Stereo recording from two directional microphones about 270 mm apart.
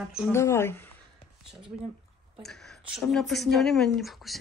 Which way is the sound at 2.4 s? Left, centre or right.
Centre.